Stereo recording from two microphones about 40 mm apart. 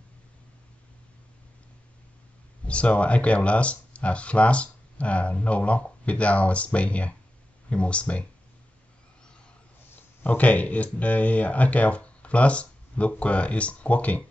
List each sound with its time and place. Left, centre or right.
2.6 s speech: left
10.2 s speech: left